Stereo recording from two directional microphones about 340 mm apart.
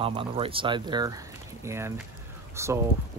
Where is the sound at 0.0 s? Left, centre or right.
Centre.